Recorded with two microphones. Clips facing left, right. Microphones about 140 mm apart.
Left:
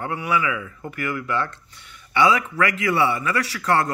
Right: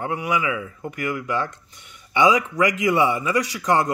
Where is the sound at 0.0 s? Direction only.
15° right (ahead or behind).